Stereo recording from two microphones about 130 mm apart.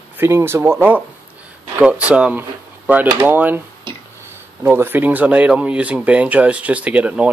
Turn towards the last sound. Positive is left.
turn(degrees=-10)  # may be behind; listen again after turning